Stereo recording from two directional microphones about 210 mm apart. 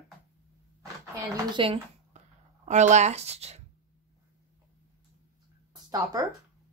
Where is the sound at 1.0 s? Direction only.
10° right (ahead or behind).